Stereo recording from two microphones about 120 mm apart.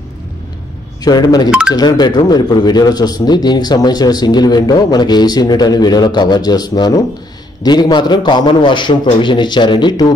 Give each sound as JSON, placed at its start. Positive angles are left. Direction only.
{"t": 1.0, "sound": "speech", "side_deg": 35}